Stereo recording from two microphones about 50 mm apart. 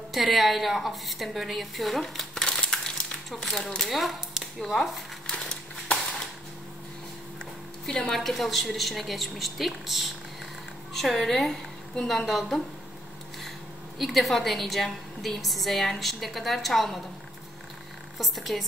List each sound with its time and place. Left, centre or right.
0.1 s a woman's voice: centre
2.3 s crushing: centre
3.5 s a woman's voice: centre
5.3 s a sound: centre
7.8 s a woman's voice: centre
13.9 s a woman's voice: centre
18.1 s a woman's voice: centre